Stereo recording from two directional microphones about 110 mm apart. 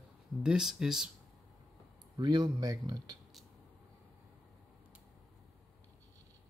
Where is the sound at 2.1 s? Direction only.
40° right (ahead or behind).